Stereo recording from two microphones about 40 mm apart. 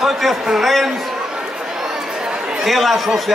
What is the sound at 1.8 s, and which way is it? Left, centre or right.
Chatter, centre.